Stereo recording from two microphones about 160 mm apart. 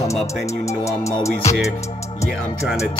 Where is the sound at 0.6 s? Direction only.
20° left (ahead or behind).